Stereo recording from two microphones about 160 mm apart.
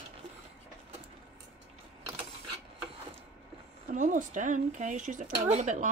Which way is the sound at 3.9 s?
50° right (ahead or behind).